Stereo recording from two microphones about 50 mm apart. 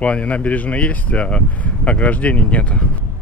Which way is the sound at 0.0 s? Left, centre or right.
Left.